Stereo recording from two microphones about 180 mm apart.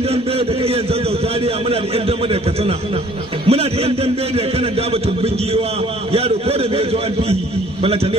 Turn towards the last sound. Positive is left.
turn(degrees=-35)  # may be behind; listen again after turning